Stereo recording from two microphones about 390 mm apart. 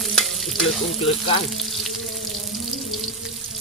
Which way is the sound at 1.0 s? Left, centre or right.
Centre.